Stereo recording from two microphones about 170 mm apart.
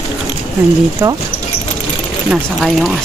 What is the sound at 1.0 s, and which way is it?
Speech, 15° right (ahead or behind).